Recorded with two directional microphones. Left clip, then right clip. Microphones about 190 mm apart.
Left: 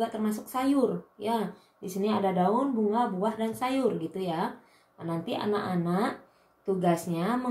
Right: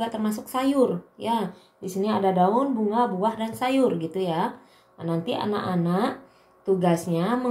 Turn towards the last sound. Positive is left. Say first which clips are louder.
# right 5 dB
turn(degrees=-25)  # may be behind; listen again after turning